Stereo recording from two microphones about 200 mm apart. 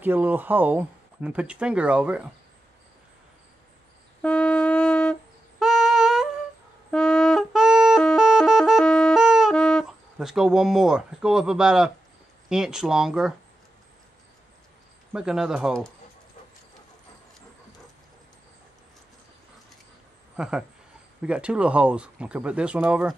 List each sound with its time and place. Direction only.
0.0 s speech: 10° right (ahead or behind)
4.2 s wind instrument: 5° left (ahead or behind)
5.6 s a sound: centre (ahead or behind)
6.9 s music: 5° left (ahead or behind)
12.4 s speech: 5° right (ahead or behind)
15.1 s speech: 5° right (ahead or behind)
20.3 s speech: 5° right (ahead or behind)